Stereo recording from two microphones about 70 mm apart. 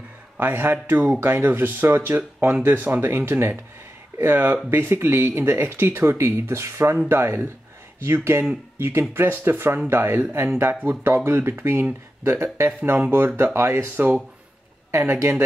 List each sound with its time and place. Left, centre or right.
0.4 s speech: right